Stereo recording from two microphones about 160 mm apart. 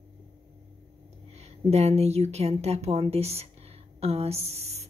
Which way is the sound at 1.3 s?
40° right (ahead or behind).